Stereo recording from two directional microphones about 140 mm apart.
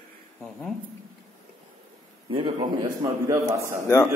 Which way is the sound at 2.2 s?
40° right (ahead or behind).